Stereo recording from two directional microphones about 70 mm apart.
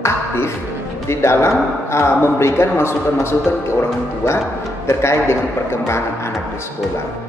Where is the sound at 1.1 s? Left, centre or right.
Left.